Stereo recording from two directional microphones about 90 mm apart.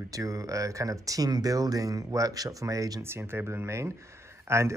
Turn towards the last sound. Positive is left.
turn(degrees=-30)  # may be behind; listen again after turning